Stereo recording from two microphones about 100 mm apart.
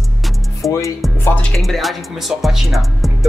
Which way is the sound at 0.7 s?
30° left (ahead or behind).